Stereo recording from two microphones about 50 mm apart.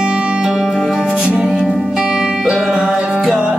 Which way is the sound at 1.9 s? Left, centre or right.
Centre.